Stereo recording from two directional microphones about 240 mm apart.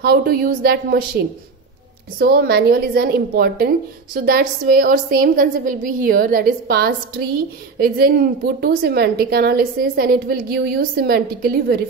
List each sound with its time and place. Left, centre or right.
0.0 s a woman's voice: right
2.1 s a woman's voice: right